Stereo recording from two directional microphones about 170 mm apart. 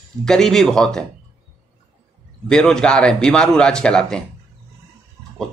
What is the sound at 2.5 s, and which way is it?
Speech, 5° left (ahead or behind).